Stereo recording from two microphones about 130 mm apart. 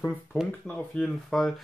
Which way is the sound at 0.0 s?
5° right (ahead or behind).